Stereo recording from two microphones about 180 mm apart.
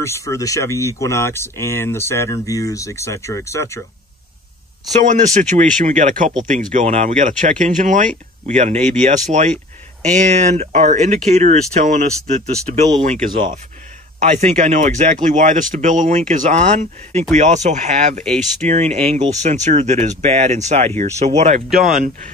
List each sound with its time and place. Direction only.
0.0 s speech: 15° left (ahead or behind)
5.0 s speech: 45° right (ahead or behind)
14.2 s speech: 40° right (ahead or behind)
21.6 s speech: centre (ahead or behind)